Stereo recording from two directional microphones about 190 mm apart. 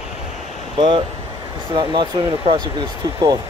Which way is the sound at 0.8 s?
25° right (ahead or behind).